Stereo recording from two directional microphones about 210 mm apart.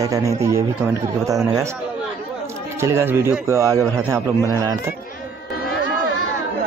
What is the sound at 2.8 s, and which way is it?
A man's voice, 10° right (ahead or behind).